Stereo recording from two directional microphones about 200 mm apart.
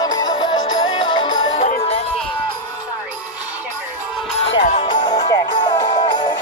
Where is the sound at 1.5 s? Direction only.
35° left (ahead or behind).